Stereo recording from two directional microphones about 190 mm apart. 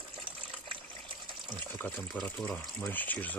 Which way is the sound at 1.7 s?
5° left (ahead or behind).